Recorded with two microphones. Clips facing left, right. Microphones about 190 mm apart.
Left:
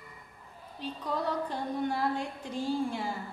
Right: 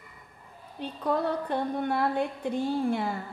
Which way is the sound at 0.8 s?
60° right (ahead or behind).